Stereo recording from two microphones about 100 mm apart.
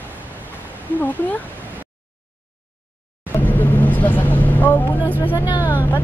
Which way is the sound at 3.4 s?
20° left (ahead or behind).